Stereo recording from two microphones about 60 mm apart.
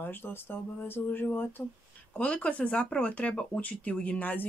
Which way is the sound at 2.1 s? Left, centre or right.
Left.